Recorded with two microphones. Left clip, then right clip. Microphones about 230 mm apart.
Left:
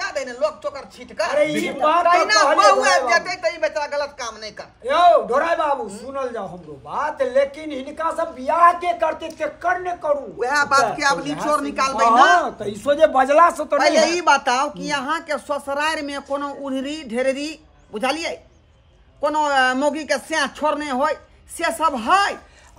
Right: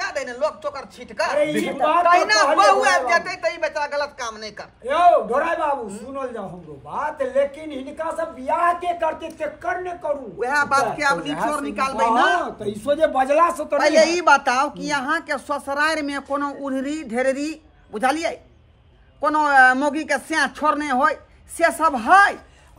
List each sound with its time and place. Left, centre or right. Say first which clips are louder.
0.0 s a woman's voice: left 1 dB; centre
12.7 s speech: left 3 dB; left
13.7 s speech: right 2 dB; centre